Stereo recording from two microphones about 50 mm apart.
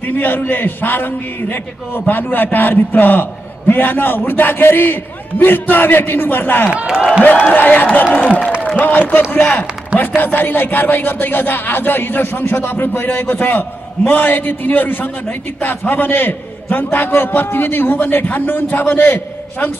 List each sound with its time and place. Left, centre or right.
0.1 s a man's voice: left
7.5 s a man's voice: left
9.9 s a man's voice: left